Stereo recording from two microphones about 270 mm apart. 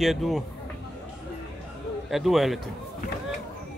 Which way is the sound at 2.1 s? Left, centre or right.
Centre.